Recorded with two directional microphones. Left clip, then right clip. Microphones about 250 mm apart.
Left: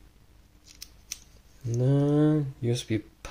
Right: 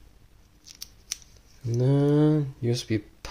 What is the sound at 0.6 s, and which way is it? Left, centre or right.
Scissors, centre.